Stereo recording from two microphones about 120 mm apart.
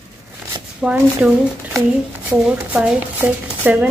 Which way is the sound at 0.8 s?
5° right (ahead or behind).